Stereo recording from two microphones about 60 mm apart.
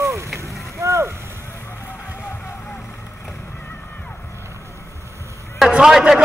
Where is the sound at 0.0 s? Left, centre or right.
Right.